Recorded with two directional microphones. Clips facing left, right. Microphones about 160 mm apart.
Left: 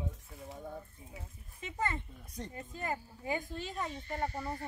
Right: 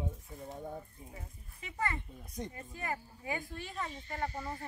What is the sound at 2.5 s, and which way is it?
Speech, 25° left (ahead or behind).